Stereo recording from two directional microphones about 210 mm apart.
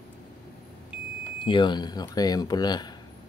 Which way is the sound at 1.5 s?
20° left (ahead or behind).